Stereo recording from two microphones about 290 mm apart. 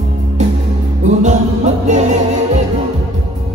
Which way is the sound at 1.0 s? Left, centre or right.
Right.